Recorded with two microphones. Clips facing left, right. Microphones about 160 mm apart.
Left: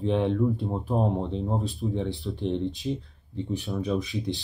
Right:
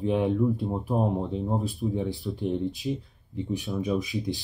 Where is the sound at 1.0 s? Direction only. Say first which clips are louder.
Left 1 dB; 5° right (ahead or behind).